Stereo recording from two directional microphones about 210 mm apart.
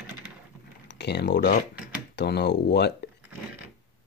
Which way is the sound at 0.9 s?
55° left (ahead or behind).